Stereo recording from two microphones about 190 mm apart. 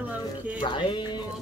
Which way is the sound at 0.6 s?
25° left (ahead or behind).